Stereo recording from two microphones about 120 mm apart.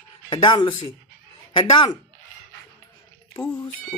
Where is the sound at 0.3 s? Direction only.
40° left (ahead or behind).